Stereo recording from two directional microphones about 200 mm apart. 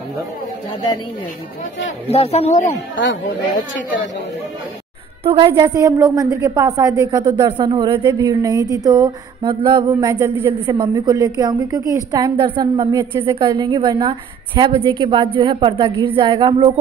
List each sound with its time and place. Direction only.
2.0 s speech: 30° left (ahead or behind)
5.2 s a woman's voice: 25° right (ahead or behind)